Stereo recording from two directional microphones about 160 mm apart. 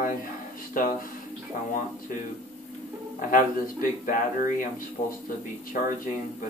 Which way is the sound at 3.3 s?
55° left (ahead or behind).